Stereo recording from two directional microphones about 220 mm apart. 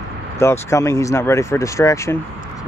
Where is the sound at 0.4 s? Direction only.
10° left (ahead or behind).